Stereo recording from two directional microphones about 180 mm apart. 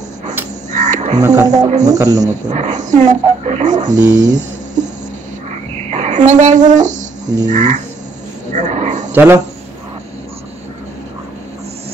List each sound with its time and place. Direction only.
0.7 s frog: 40° right (ahead or behind)
1.2 s speech: 20° right (ahead or behind)
2.5 s speech: 40° right (ahead or behind)
5.5 s a sound: 40° right (ahead or behind)
7.4 s frog: 40° right (ahead or behind)
8.5 s a sound: 40° right (ahead or behind)
9.1 s speech: 10° right (ahead or behind)